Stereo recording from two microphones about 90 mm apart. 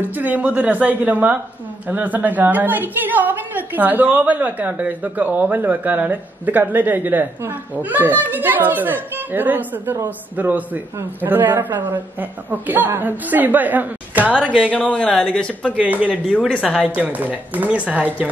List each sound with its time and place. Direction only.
0.0 s a woman's voice: 20° right (ahead or behind)
14.6 s speech: 15° left (ahead or behind)
15.7 s a woman's voice: 15° right (ahead or behind)
16.3 s speech: 15° left (ahead or behind)
16.6 s a woman's voice: 10° right (ahead or behind)